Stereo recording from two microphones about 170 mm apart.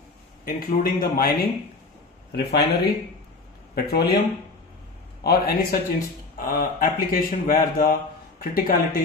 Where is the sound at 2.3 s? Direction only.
70° left (ahead or behind).